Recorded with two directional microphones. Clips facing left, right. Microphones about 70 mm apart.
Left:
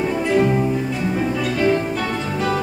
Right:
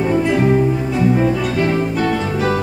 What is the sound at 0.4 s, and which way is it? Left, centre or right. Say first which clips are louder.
Music: right 1 dB; right.